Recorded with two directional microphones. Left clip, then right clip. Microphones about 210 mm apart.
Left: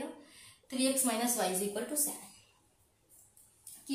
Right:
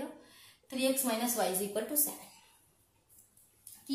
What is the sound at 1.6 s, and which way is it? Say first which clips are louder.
Speech: right 1 dB; 45° right (ahead or behind).